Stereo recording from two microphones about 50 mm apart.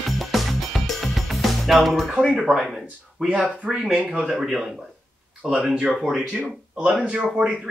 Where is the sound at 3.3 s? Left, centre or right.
Right.